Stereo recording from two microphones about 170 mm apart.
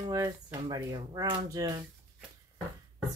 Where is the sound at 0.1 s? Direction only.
20° right (ahead or behind).